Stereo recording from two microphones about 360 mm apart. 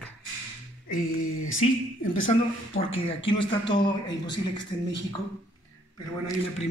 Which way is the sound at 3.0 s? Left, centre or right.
Centre.